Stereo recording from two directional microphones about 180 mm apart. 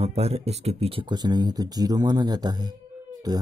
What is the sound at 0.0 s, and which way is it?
Speech, 35° right (ahead or behind).